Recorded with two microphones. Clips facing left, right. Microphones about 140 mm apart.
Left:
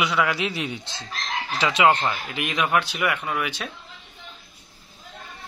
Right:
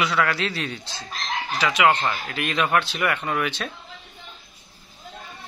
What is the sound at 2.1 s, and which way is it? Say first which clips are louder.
Speech: right 1 dB; 15° left (ahead or behind).